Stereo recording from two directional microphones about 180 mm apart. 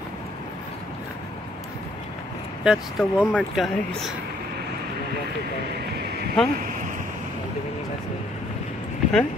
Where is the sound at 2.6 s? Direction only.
5° right (ahead or behind).